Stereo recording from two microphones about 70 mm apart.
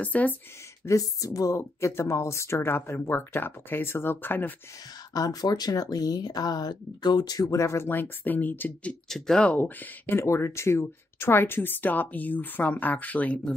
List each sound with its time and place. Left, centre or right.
0.0 s speech: left
0.8 s speech: left
5.1 s speech: left
7.9 s speech: left